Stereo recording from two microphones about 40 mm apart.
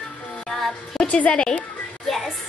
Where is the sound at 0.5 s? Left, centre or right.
Centre.